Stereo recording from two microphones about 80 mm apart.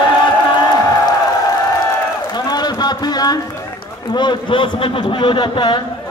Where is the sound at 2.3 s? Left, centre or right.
Left.